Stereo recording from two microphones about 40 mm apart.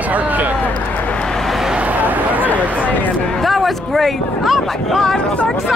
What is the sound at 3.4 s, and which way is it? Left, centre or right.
Speech, centre.